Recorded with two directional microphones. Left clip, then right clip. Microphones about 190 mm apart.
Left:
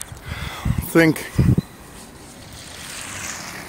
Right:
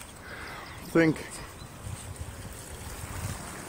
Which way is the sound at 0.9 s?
40° left (ahead or behind).